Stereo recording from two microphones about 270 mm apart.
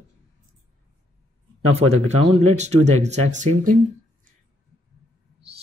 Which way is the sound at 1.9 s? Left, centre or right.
Right.